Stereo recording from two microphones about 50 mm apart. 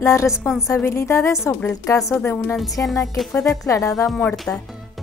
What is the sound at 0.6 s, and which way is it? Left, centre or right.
Speech, left.